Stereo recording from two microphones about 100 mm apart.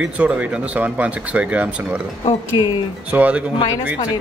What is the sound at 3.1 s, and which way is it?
Speech, 15° right (ahead or behind).